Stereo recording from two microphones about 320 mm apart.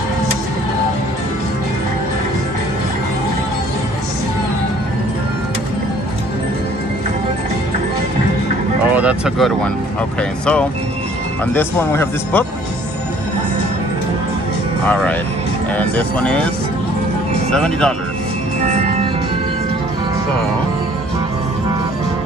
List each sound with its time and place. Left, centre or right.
8.9 s vehicle: centre
10.4 s a man's voice: centre
15.7 s a man's voice: centre
17.5 s a man's voice: centre
18.7 s music: right